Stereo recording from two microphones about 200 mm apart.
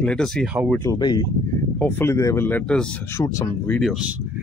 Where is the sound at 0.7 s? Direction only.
15° left (ahead or behind).